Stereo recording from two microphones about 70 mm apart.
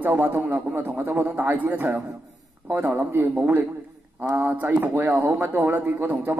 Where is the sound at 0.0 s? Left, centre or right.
Right.